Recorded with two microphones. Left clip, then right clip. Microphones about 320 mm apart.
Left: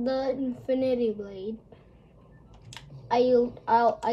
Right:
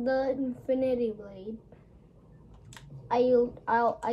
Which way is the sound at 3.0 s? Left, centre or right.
Left.